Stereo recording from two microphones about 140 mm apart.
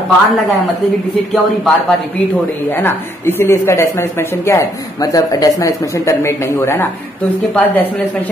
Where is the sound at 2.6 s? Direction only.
15° left (ahead or behind).